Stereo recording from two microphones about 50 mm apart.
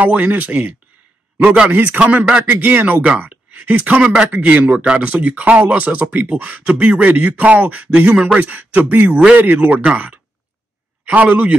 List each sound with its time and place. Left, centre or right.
0.0 s speech: right
1.7 s speech: right
2.4 s speech: right